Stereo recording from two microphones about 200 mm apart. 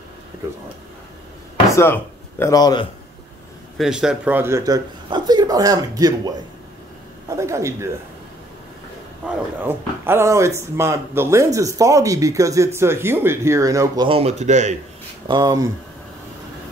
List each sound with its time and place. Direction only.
1.8 s speech: 10° left (ahead or behind)
3.7 s speech: centre (ahead or behind)
9.2 s speech: 5° right (ahead or behind); by 14.8 s 35° right (ahead or behind)
15.2 s speech: 20° right (ahead or behind)